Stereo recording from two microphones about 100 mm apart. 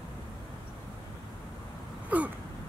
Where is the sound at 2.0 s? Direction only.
15° right (ahead or behind).